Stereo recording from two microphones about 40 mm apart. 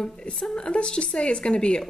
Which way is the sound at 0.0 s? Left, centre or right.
Centre.